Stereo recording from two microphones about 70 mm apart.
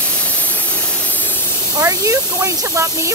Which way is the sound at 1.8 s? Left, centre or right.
Right.